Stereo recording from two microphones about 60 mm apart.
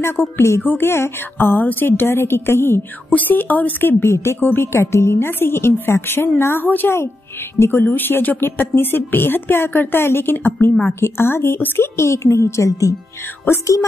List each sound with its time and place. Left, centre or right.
0.0 s a woman's voice: left
3.1 s a woman's voice: left
4.0 s a woman's voice: left
4.4 s a woman's voice: left
4.7 s a woman's voice: left
6.9 s a woman's voice: left
10.7 s a woman's voice: centre
11.0 s a woman's voice: left